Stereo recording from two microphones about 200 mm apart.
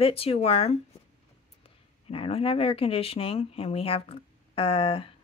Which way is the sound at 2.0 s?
30° left (ahead or behind).